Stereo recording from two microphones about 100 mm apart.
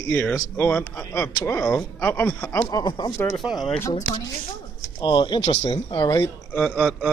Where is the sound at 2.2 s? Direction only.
10° left (ahead or behind).